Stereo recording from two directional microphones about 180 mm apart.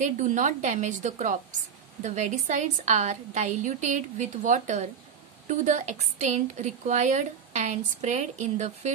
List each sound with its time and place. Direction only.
0.0 s a woman's voice: 40° right (ahead or behind)